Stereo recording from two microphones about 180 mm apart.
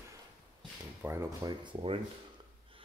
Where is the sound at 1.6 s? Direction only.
30° right (ahead or behind).